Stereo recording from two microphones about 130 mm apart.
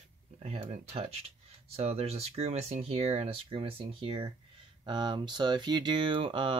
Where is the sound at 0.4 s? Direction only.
50° right (ahead or behind).